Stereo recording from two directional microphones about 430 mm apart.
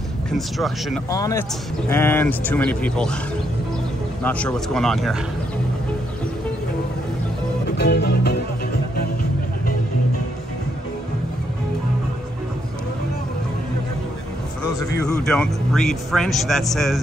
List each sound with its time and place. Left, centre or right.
0.3 s speech: centre
4.2 s speech: centre
7.7 s music: left
15.0 s speech: centre